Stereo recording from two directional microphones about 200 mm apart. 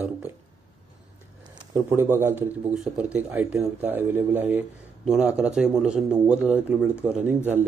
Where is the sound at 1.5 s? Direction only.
20° right (ahead or behind).